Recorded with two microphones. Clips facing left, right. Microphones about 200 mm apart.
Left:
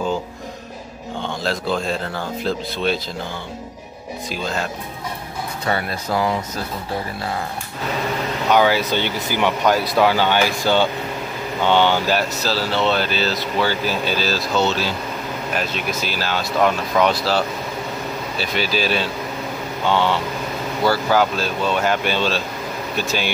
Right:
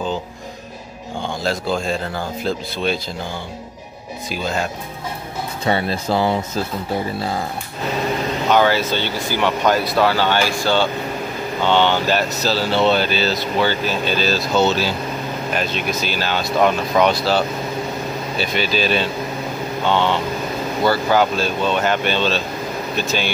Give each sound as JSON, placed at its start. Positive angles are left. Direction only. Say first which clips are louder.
{"t": 1.4, "sound": "speech", "louder": "right 1 dB", "side_deg": -5}
{"t": 4.3, "sound": "speech", "louder": "right 2 dB", "side_deg": -5}
{"t": 5.7, "sound": "speech", "louder": "right 4 dB", "side_deg": -25}
{"t": 8.5, "sound": "speech", "louder": "even", "side_deg": 10}
{"t": 15.5, "sound": "speech", "louder": "right 2 dB", "side_deg": 5}
{"t": 16.5, "sound": "speech", "louder": "right 2 dB", "side_deg": -10}
{"t": 17.0, "sound": "speech", "louder": "right 1 dB", "side_deg": 0}
{"t": 18.4, "sound": "speech", "louder": "right 2 dB", "side_deg": 5}